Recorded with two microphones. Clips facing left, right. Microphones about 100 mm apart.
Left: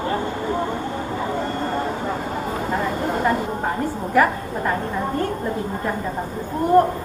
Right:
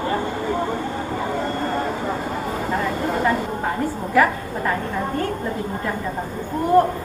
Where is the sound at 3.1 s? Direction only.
40° left (ahead or behind).